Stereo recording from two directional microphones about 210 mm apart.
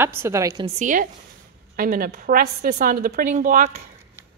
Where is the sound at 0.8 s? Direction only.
40° right (ahead or behind).